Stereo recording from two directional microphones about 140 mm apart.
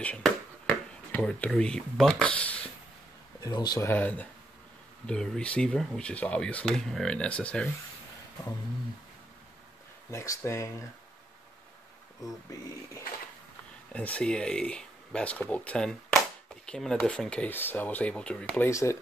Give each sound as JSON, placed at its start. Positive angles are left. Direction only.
{"t": 0.0, "sound": "speech", "side_deg": 5}
{"t": 3.4, "sound": "speech", "side_deg": 30}
{"t": 3.8, "sound": "speech", "side_deg": 15}
{"t": 10.1, "sound": "speech", "side_deg": 20}
{"t": 12.2, "sound": "speech", "side_deg": 25}
{"t": 13.9, "sound": "speech", "side_deg": 10}
{"t": 18.7, "sound": "speech", "side_deg": 20}